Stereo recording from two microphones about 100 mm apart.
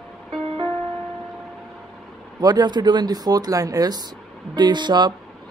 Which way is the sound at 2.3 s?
40° right (ahead or behind).